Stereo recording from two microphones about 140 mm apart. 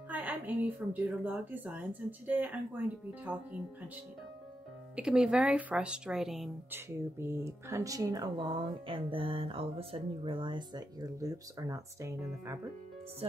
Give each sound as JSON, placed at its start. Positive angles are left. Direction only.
{"t": 0.1, "sound": "a woman's voice", "side_deg": -10}
{"t": 4.9, "sound": "a woman's voice", "side_deg": -5}
{"t": 6.7, "sound": "speech", "side_deg": -15}